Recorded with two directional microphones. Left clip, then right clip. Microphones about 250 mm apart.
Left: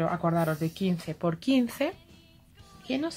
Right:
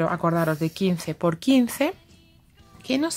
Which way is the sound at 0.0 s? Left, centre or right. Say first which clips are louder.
Right 4 dB; right.